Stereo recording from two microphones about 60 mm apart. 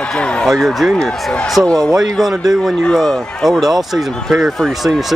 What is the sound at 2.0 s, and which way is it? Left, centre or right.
Speech, centre.